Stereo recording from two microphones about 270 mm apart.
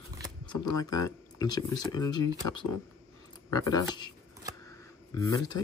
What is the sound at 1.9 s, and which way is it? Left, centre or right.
Mantra, centre.